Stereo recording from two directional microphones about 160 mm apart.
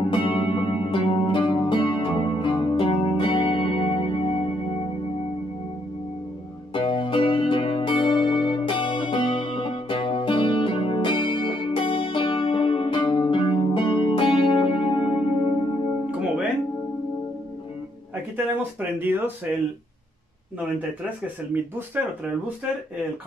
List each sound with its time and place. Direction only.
0.1 s music: 30° left (ahead or behind)
6.7 s music: 30° left (ahead or behind)
16.1 s music: 5° right (ahead or behind)
18.3 s a sound: 10° right (ahead or behind)